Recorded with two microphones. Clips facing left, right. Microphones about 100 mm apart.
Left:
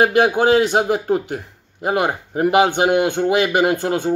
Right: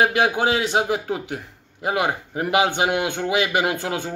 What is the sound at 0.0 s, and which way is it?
Speech, 45° left (ahead or behind).